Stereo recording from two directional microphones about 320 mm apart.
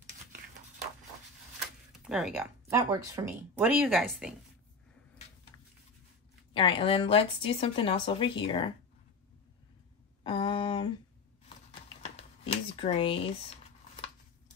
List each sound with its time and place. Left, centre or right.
2.0 s speech: centre
6.5 s speech: centre
10.2 s speech: centre
12.2 s a sound: centre